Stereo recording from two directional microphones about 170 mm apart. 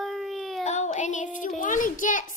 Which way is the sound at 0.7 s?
45° left (ahead or behind).